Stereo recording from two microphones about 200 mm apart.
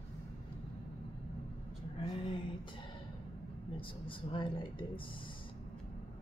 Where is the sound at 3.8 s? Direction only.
25° left (ahead or behind).